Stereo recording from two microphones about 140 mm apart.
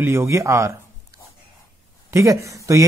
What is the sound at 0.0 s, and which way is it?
Speech, 15° right (ahead or behind).